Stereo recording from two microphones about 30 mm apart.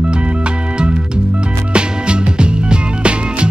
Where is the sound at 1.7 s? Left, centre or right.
Right.